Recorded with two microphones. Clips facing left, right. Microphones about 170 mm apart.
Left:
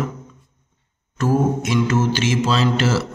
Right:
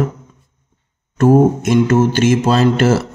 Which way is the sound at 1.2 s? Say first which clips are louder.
Right 8 dB; 50° right (ahead or behind).